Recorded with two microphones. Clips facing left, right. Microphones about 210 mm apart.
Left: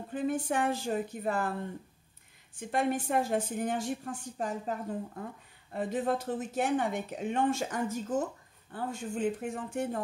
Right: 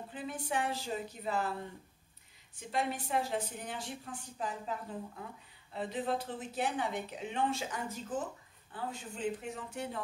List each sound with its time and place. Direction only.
0.1 s a woman's voice: 45° left (ahead or behind)
2.5 s a woman's voice: 50° left (ahead or behind)